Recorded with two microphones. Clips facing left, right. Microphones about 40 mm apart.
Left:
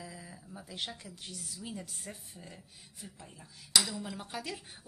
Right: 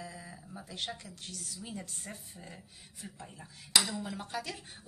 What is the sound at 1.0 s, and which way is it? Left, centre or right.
Speech, centre.